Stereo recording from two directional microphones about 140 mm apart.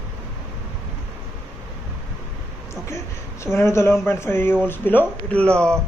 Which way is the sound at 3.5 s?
20° left (ahead or behind).